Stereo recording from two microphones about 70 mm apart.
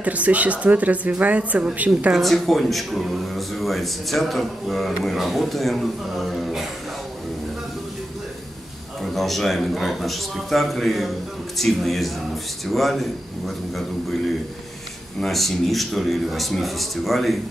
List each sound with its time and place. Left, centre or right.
0.0 s speech: right
2.1 s speech: centre
9.0 s speech: centre
15.1 s speech: centre